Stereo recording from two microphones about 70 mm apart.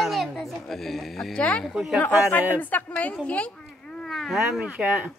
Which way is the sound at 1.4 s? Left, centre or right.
Centre.